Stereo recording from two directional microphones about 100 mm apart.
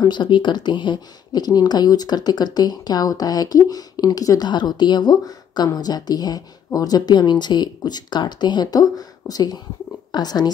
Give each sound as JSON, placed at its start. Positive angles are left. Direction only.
{"t": 0.0, "sound": "speech", "side_deg": 50}